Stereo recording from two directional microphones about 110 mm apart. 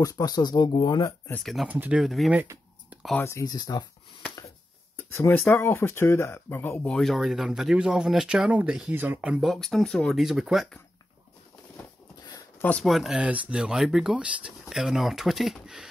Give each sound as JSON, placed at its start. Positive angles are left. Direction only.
{"t": 0.0, "sound": "speech", "side_deg": 35}
{"t": 1.4, "sound": "speech", "side_deg": 0}
{"t": 1.7, "sound": "speech", "side_deg": -15}
{"t": 3.2, "sound": "speech", "side_deg": 25}
{"t": 3.4, "sound": "speech", "side_deg": 35}
{"t": 4.9, "sound": "a sound", "side_deg": 25}
{"t": 5.4, "sound": "speech", "side_deg": 20}
{"t": 6.9, "sound": "speech", "side_deg": 0}
{"t": 9.5, "sound": "speech", "side_deg": 0}
{"t": 12.8, "sound": "speech", "side_deg": 0}